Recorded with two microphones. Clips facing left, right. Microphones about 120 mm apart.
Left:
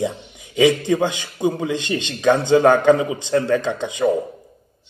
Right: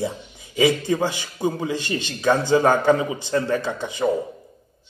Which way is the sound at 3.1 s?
20° left (ahead or behind).